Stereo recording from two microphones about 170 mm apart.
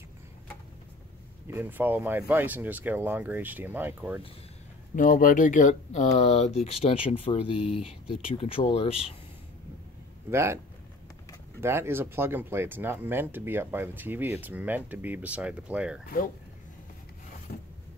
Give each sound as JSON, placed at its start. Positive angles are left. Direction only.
{"t": 1.5, "sound": "speech", "side_deg": -10}
{"t": 4.9, "sound": "speech", "side_deg": 50}
{"t": 10.3, "sound": "speech", "side_deg": -15}
{"t": 11.6, "sound": "speech", "side_deg": -15}
{"t": 17.5, "sound": "a sound", "side_deg": 60}